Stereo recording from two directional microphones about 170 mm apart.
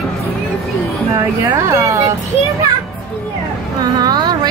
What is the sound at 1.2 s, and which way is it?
Speech, 15° right (ahead or behind).